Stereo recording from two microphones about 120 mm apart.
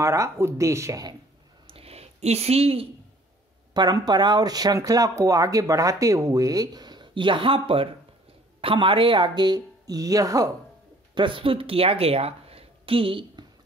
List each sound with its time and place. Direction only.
0.0 s speech: 25° right (ahead or behind)
1.7 s a sound: 55° right (ahead or behind)
3.7 s speech: 35° right (ahead or behind)
11.1 s speech: 45° right (ahead or behind)